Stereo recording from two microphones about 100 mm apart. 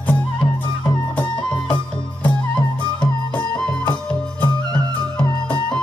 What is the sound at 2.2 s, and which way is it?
Music, 10° left (ahead or behind).